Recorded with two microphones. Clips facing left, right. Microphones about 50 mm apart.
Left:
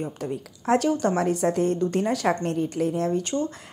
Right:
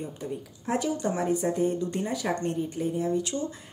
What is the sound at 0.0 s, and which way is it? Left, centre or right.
A woman's voice, left.